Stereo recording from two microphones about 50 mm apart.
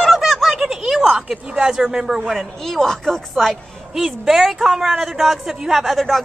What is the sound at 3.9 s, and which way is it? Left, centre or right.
A woman's voice, centre.